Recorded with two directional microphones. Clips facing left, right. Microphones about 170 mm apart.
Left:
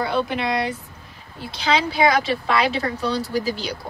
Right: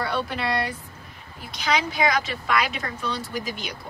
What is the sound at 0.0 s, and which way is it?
Speech, 20° left (ahead or behind).